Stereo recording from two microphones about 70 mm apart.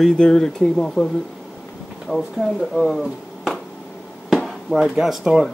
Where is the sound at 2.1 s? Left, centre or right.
Centre.